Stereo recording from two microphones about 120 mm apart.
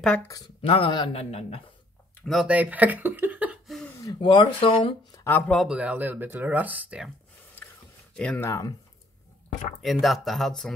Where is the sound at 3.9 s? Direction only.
25° left (ahead or behind).